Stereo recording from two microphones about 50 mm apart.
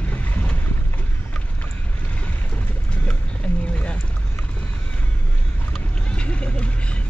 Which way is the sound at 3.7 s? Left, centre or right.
Left.